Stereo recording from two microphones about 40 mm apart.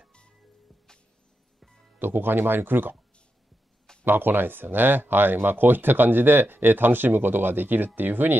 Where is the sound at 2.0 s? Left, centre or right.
Right.